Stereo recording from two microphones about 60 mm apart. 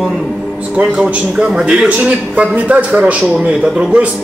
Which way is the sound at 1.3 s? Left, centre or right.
Centre.